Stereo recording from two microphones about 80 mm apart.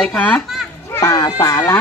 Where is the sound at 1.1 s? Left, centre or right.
Left.